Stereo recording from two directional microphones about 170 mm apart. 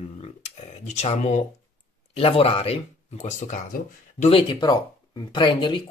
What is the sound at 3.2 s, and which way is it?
Speech, 45° left (ahead or behind).